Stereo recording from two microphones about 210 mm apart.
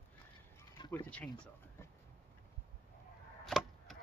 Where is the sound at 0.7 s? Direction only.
20° left (ahead or behind).